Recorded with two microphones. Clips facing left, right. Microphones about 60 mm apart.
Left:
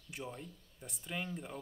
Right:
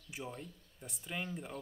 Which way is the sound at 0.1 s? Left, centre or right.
Centre.